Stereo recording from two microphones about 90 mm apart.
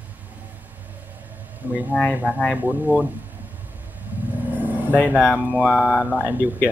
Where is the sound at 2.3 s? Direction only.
20° left (ahead or behind).